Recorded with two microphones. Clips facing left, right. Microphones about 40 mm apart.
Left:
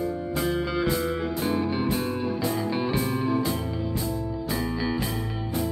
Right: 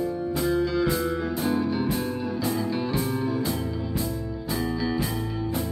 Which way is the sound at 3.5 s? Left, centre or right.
Centre.